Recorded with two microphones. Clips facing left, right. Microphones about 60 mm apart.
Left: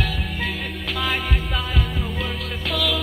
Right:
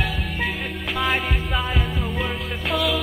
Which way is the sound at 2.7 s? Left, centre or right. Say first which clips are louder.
Right 2 dB; right.